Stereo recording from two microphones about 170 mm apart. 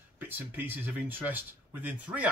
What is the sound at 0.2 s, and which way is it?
Speech, 10° right (ahead or behind).